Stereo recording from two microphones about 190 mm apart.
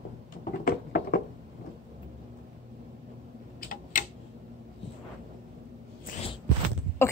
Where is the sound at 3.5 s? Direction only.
45° left (ahead or behind).